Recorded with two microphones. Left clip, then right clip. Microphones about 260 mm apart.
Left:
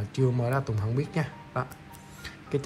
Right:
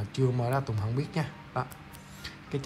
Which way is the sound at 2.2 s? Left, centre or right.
Centre.